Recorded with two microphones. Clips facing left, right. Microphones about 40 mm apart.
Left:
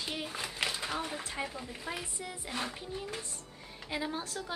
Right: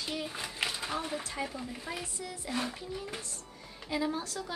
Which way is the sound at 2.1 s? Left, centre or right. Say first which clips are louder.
Right 3 dB; left.